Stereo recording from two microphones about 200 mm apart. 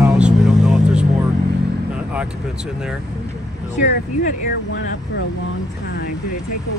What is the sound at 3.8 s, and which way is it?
Speech, 40° left (ahead or behind).